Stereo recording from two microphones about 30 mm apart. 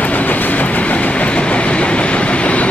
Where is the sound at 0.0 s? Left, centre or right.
Left.